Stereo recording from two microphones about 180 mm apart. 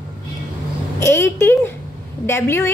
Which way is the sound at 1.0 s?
15° left (ahead or behind).